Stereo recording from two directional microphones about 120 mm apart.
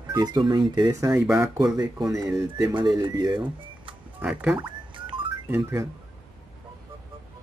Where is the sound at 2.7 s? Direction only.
40° right (ahead or behind).